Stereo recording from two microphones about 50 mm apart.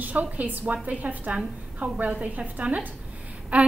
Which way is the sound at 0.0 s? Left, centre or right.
Right.